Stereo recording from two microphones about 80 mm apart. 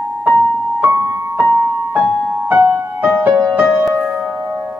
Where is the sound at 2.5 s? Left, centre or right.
Right.